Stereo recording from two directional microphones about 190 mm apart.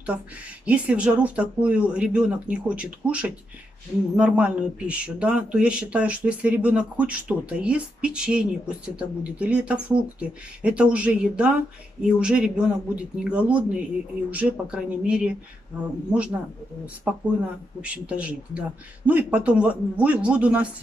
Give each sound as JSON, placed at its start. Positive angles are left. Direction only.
{"t": 0.7, "sound": "speech", "side_deg": -5}